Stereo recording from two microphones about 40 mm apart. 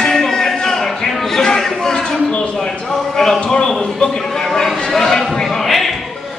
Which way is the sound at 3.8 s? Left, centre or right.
Centre.